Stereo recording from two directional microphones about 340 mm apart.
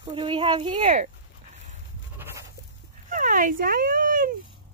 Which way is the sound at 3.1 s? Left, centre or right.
Right.